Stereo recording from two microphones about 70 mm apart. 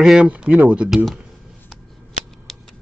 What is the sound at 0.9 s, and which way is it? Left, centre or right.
Speech, centre.